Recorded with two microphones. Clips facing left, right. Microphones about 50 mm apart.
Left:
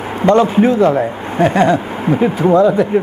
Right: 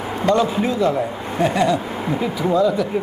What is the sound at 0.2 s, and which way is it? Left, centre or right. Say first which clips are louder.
Speech: left 7 dB; left.